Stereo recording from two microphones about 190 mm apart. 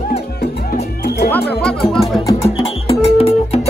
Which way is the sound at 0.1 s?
40° left (ahead or behind).